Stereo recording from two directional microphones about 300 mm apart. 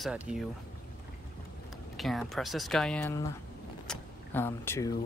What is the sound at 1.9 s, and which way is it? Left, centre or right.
Speech, centre.